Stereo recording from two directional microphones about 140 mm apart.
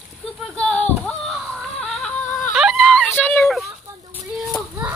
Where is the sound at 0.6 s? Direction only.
10° left (ahead or behind).